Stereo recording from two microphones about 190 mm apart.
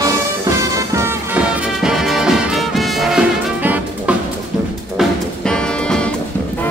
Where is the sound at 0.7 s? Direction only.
15° right (ahead or behind).